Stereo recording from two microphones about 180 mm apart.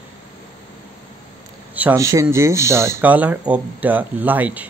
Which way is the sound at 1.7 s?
15° right (ahead or behind).